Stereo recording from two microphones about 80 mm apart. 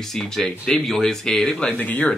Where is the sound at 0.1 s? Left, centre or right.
Centre.